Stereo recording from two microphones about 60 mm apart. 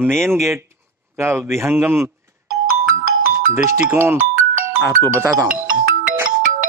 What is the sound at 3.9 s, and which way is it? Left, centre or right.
Speech, right.